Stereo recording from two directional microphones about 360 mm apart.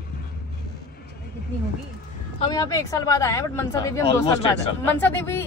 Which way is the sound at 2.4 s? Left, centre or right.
Centre.